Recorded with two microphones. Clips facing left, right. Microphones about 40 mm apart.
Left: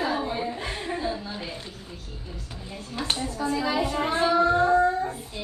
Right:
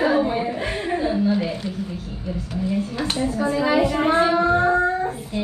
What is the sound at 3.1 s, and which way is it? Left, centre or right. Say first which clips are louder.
A woman's voice: right 6 dB; centre.